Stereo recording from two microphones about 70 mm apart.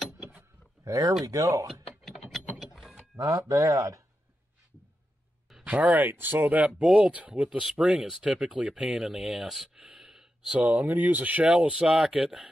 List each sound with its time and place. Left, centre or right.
0.8 s speech: right
1.7 s a sound: centre
2.6 s mechanisms: centre
3.2 s speech: right
5.7 s speech: right; by 9.8 s centre
9.9 s a sound: centre
10.6 s speech: right